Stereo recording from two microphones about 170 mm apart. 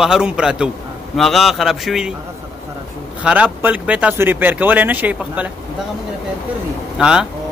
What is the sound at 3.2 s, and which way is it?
Speech, 10° right (ahead or behind).